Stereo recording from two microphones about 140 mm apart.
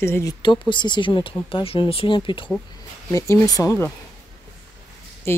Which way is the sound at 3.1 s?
20° left (ahead or behind).